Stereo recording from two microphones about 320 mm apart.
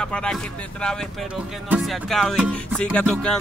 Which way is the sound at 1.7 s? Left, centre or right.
Centre.